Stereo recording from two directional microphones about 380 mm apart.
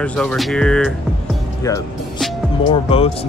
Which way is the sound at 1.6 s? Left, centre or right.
Centre.